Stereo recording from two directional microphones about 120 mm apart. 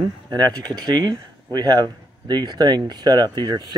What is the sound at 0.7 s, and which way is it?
Speech, 35° right (ahead or behind).